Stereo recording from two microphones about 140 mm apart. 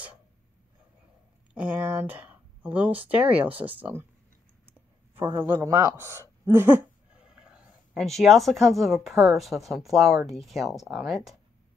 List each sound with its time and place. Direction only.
1.5 s speech: 10° right (ahead or behind)
5.4 s speech: 20° right (ahead or behind)
7.2 s speech: 5° right (ahead or behind)